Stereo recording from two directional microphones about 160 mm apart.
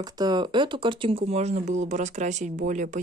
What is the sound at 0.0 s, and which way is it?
Speech, 25° right (ahead or behind).